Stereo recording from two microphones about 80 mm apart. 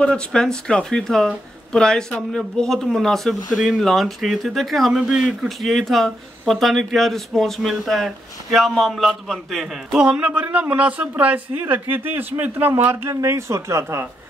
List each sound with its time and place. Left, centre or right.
0.0 s speech: centre
5.6 s speech: centre
10.0 s speech: centre
13.1 s speech: right